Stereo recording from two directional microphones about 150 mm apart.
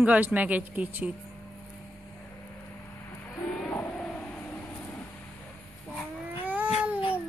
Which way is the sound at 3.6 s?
10° left (ahead or behind).